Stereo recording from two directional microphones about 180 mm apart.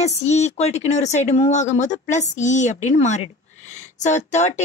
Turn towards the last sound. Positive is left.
turn(degrees=40)  # may be behind; listen again after turning